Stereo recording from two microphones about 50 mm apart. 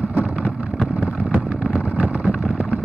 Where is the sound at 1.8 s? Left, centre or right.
Right.